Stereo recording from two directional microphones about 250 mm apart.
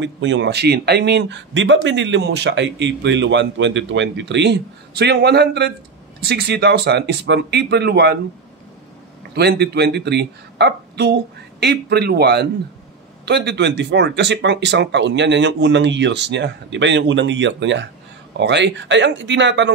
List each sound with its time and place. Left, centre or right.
0.0 s speech: right
9.3 s speech: right